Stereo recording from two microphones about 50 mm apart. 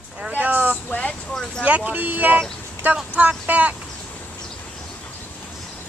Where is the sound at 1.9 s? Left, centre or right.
Right.